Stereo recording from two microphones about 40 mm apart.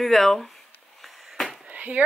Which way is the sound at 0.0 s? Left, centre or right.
Centre.